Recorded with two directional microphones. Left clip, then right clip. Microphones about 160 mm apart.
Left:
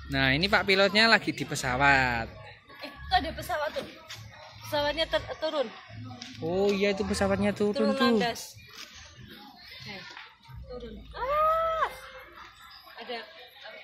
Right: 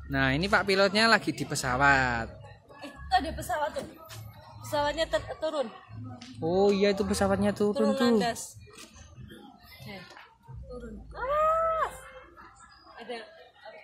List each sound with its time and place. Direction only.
0.1 s a woman's voice: 5° right (ahead or behind); by 5.7 s 25° left (ahead or behind)
6.4 s speech: 20° right (ahead or behind)
8.2 s speech: 15° left (ahead or behind)
10.7 s a sound: 5° left (ahead or behind)